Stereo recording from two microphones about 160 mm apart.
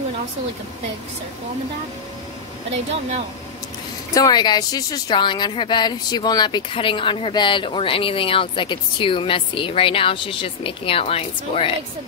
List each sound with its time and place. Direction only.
2.7 s speech: 40° right (ahead or behind)
4.1 s speech: 25° left (ahead or behind)